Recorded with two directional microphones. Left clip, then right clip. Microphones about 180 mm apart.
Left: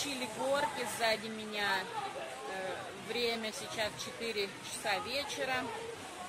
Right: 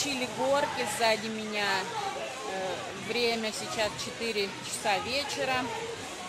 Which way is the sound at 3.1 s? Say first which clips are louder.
Right 6 dB; 10° right (ahead or behind).